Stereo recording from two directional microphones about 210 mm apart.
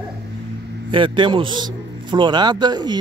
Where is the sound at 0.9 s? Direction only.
25° right (ahead or behind).